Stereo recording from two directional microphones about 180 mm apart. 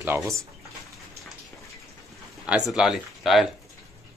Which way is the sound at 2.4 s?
5° right (ahead or behind).